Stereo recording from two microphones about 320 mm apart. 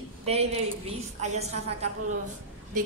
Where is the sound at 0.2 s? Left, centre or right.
Centre.